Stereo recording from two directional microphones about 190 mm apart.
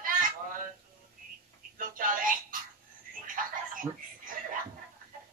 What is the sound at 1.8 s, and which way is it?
Music, 45° right (ahead or behind).